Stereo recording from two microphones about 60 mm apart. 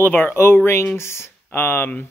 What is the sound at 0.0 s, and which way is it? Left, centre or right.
Speech, left.